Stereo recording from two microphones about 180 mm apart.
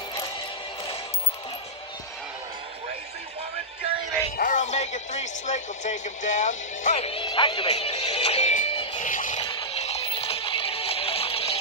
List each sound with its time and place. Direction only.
4.4 s speech: 45° left (ahead or behind)
9.0 s music: 45° left (ahead or behind)
9.4 s music: 30° left (ahead or behind)